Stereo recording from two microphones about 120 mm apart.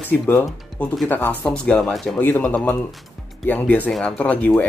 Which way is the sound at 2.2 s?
15° left (ahead or behind).